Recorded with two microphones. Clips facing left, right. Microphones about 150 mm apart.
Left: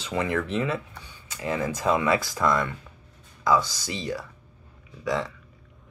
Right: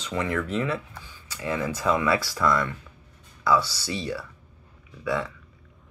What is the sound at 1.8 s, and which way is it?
Speech, 20° left (ahead or behind).